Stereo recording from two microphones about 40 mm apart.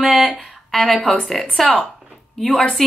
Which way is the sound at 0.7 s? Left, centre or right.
Centre.